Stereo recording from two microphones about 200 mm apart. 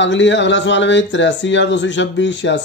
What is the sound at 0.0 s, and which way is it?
Speech, 65° left (ahead or behind).